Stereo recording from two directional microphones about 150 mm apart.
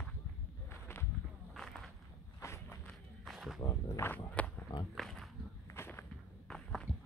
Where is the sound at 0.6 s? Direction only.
15° left (ahead or behind).